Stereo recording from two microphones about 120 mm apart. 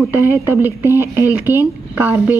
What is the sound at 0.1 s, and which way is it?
A woman's voice, 20° right (ahead or behind).